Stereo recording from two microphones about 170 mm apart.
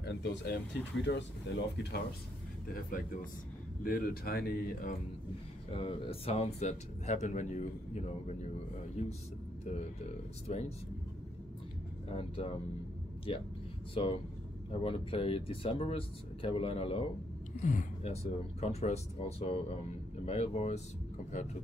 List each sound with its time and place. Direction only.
0.0 s speech: 80° left
1.0 s speech: 90° left
3.8 s speech: 60° left (ahead or behind)
5.7 s speech: 30° left (ahead or behind)
10.5 s speech: 40° left (ahead or behind)
12.2 s speech: 30° left (ahead or behind)